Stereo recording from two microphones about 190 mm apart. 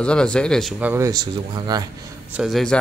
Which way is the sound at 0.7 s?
10° right (ahead or behind).